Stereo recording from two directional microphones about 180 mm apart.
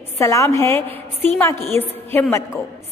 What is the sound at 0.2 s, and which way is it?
A woman's voice, 15° left (ahead or behind).